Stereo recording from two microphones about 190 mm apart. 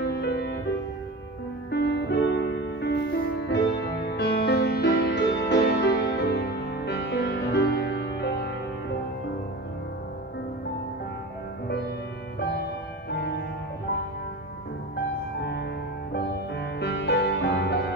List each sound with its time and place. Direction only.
0.1 s music: 60° left (ahead or behind)
1.7 s music: 65° left (ahead or behind)
16.1 s music: 60° left (ahead or behind)